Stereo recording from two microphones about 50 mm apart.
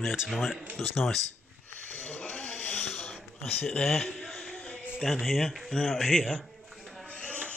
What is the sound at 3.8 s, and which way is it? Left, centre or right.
Speech, centre.